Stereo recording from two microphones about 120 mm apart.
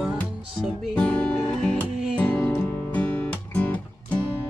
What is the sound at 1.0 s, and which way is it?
Music, 10° left (ahead or behind).